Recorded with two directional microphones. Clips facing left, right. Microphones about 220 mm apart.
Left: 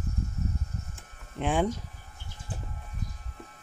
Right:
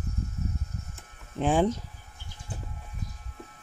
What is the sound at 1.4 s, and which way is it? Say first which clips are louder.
Speech: right 3 dB; 35° right (ahead or behind).